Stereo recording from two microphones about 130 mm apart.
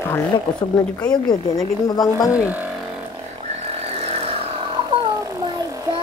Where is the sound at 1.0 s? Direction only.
30° left (ahead or behind).